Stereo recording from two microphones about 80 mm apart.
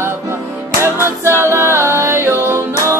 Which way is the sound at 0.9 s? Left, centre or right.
Right.